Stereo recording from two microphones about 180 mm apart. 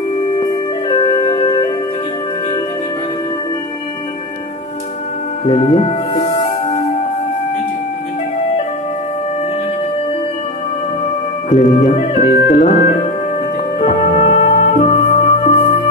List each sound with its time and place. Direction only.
0.8 s music: 30° left (ahead or behind)
5.4 s music: 30° left (ahead or behind)
11.4 s music: 40° left (ahead or behind)